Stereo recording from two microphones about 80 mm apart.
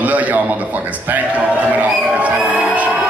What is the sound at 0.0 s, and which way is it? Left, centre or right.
Speech, centre.